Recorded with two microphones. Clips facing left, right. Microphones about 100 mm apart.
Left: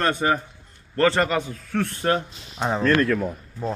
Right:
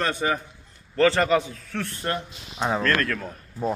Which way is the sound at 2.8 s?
15° left (ahead or behind).